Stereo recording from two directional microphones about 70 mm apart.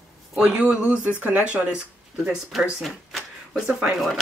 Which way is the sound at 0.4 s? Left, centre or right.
Centre.